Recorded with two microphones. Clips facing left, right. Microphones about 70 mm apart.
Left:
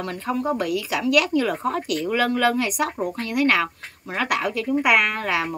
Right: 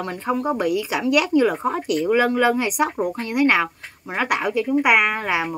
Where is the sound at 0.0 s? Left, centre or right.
Centre.